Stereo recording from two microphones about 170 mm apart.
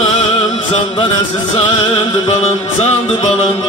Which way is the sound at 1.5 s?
35° left (ahead or behind).